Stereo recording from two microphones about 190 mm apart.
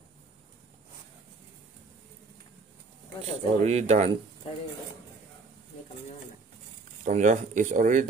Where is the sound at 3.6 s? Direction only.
35° right (ahead or behind).